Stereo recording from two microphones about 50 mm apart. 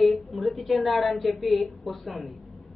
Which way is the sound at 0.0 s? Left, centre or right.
Centre.